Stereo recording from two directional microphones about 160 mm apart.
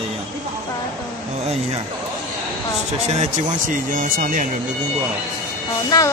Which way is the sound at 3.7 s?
60° right (ahead or behind).